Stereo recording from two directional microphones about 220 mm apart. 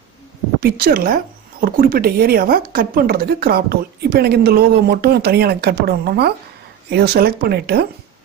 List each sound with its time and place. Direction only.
0.6 s speech: 40° right (ahead or behind)